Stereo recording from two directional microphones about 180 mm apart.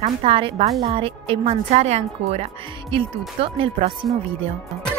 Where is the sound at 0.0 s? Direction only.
30° right (ahead or behind).